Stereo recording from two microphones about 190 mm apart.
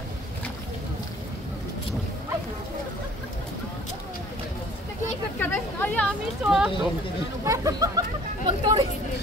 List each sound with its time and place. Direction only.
5.4 s chatter: 10° left (ahead or behind)
6.4 s speech: 5° right (ahead or behind)
7.4 s speech: 15° right (ahead or behind)